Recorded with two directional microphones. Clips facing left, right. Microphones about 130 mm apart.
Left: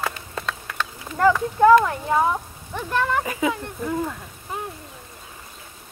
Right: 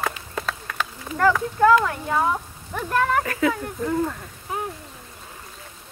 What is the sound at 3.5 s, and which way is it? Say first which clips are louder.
Speech: right 2 dB; 5° left (ahead or behind).